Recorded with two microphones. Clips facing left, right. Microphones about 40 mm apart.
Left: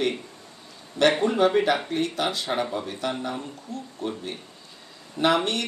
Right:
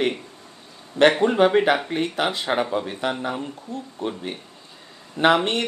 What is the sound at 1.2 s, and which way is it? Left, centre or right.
Speech, right.